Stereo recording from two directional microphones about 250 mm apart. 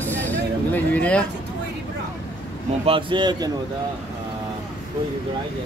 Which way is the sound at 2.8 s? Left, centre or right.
Right.